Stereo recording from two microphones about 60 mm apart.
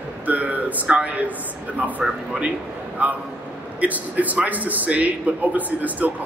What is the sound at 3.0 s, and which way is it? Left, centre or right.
A man's voice, right.